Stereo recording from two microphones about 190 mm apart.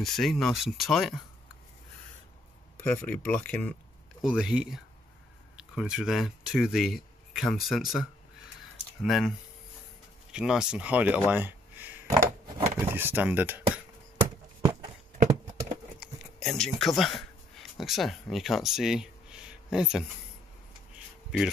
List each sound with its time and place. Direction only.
0.0 s speech: centre (ahead or behind)
2.8 s speech: 5° left (ahead or behind)
10.3 s speech: 5° right (ahead or behind)
14.6 s horse: 25° right (ahead or behind)
16.0 s speech: centre (ahead or behind)